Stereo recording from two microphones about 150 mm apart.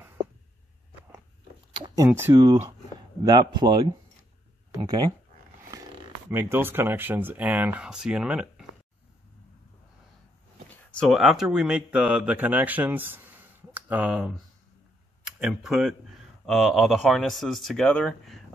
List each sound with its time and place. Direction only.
1.7 s speech: 30° right (ahead or behind)
2.0 s speech: 15° right (ahead or behind)
2.3 s a man's voice: 25° right (ahead or behind)
6.3 s speech: 15° right (ahead or behind)
10.7 s speech: 5° left (ahead or behind); by 14.3 s 10° right (ahead or behind)
15.3 s speech: centre (ahead or behind)